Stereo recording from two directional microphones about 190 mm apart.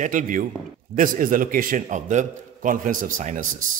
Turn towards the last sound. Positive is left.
turn(degrees=-40)  # may be behind; listen again after turning